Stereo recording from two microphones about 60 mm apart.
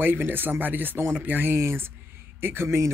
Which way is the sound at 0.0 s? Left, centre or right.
Right.